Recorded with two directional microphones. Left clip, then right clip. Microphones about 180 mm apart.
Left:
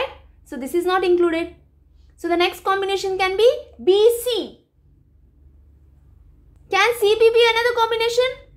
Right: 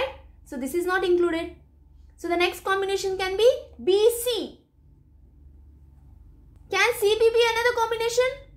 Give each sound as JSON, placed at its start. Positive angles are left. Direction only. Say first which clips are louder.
{"t": 0.0, "sound": "a child's voice", "louder": "left 3 dB", "side_deg": 20}
{"t": 6.7, "sound": "a child's voice", "louder": "left 5 dB", "side_deg": 25}